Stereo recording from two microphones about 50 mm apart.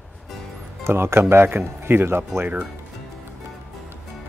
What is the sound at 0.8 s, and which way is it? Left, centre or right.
Speech, right.